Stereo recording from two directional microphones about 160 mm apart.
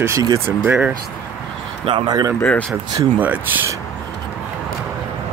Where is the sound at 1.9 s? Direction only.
30° right (ahead or behind).